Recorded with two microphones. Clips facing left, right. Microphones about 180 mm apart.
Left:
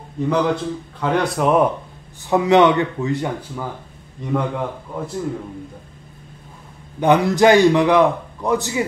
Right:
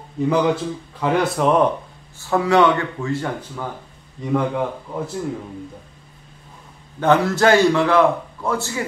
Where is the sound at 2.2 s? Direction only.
20° left (ahead or behind).